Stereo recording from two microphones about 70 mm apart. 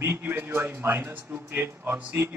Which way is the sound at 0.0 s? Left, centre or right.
Right.